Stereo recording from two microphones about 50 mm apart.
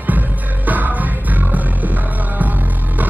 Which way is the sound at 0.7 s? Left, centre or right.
Right.